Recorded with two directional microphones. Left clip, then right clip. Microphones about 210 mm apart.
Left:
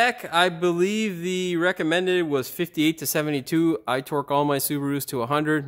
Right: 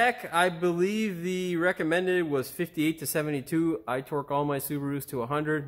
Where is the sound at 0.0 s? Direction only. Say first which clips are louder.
Left 4 dB; 40° left (ahead or behind).